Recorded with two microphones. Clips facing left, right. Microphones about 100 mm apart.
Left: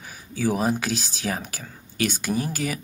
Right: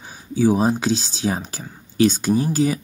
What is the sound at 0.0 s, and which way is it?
Speech, 20° right (ahead or behind).